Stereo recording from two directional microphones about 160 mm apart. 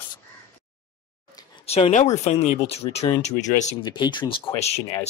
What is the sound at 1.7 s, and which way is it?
Speech, 40° left (ahead or behind).